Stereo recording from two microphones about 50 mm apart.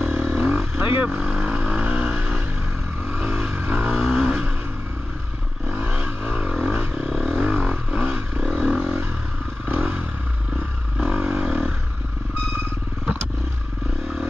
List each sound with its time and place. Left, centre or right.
0.0 s vehicle: right
0.7 s vehicle: right
1.1 s vehicle: right
5.7 s vehicle: right
7.1 s vehicle: centre
11.0 s vehicle: centre